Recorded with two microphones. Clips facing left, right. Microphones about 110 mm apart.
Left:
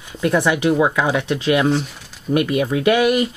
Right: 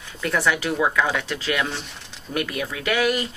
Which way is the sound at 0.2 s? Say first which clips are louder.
Left 6 dB; 20° left (ahead or behind).